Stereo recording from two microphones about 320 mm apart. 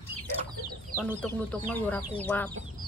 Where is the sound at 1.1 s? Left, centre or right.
Centre.